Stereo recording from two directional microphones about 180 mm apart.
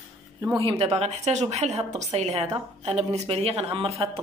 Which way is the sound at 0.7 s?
35° right (ahead or behind).